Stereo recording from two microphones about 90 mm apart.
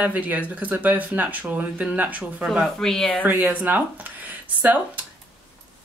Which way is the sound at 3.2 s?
20° right (ahead or behind).